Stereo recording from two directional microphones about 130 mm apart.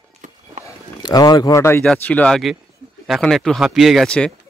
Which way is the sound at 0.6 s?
30° left (ahead or behind).